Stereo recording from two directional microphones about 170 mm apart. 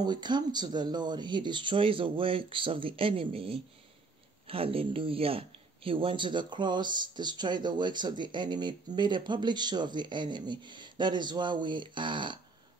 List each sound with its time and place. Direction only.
0.0 s speech: 25° right (ahead or behind)